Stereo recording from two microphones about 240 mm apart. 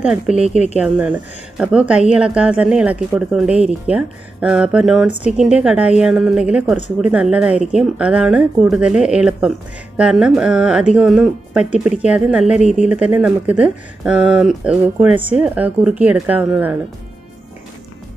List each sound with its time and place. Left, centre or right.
0.0 s a woman's voice: centre
12.5 s speech: left
12.8 s speech: centre